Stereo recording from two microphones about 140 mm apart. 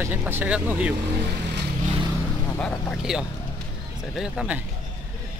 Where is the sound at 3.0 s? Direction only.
5° right (ahead or behind).